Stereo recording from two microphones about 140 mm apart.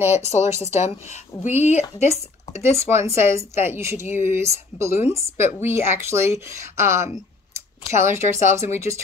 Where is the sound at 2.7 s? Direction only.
20° right (ahead or behind).